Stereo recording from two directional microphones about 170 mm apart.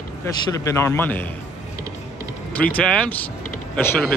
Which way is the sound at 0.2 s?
15° left (ahead or behind).